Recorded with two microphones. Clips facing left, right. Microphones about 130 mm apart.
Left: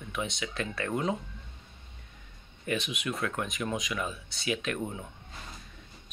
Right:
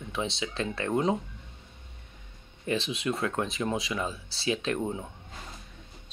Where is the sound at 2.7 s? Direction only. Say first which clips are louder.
Right 3 dB; 30° right (ahead or behind).